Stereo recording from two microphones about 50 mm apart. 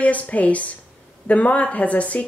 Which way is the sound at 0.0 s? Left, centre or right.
Left.